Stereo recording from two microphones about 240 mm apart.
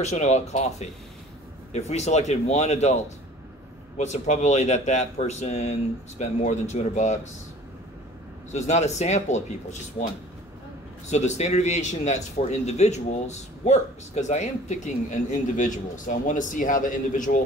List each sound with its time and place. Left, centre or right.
0.0 s a man's voice: left
4.0 s a man's voice: left
8.5 s a man's voice: left
11.1 s a man's voice: left